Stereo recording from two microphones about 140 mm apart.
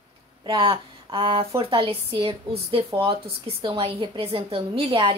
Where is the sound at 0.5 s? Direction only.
40° right (ahead or behind).